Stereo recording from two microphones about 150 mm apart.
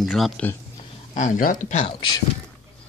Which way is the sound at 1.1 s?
60° left (ahead or behind).